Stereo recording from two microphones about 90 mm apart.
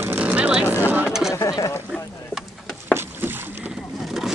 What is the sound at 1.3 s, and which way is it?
Speech, 35° left (ahead or behind).